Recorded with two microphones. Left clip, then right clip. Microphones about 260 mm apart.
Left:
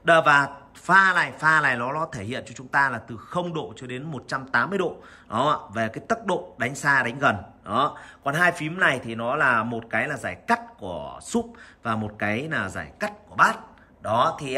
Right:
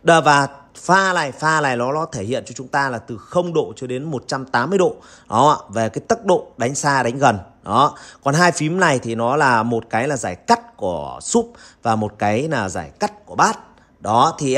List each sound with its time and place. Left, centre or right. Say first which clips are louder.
0.0 s a man's voice: right 4 dB; centre